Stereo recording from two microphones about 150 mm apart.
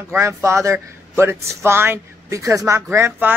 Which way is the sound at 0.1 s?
20° right (ahead or behind).